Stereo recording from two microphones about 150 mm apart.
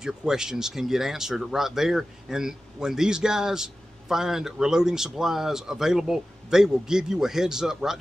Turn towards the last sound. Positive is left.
turn(degrees=-5)  # may be behind; listen again after turning